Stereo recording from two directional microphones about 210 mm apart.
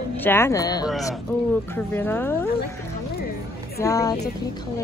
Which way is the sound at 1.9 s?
10° left (ahead or behind).